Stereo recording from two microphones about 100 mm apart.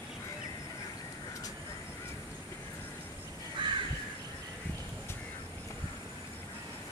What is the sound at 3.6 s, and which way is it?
Crow, 55° right (ahead or behind).